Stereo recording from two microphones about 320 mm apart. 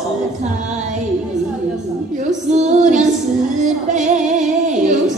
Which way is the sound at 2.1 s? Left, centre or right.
Right.